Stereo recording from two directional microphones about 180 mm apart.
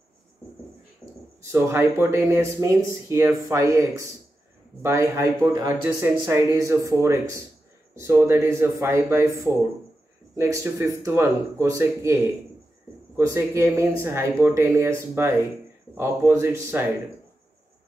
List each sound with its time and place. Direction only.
1.4 s speech: 15° right (ahead or behind)